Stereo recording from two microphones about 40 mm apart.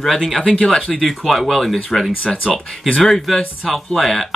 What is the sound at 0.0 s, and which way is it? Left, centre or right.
Speech, centre.